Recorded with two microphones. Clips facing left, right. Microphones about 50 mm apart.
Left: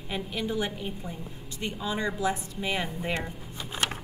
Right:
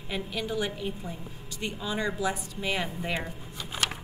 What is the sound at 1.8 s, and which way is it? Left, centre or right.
Speech, centre.